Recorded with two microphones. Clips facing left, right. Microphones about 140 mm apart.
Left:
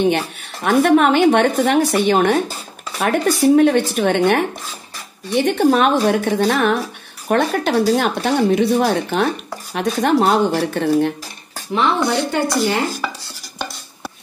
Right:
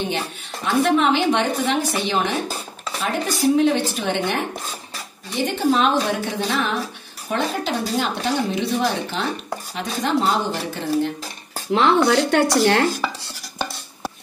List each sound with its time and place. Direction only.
0.7 s speech: 55° left (ahead or behind)
12.3 s speech: 75° right (ahead or behind)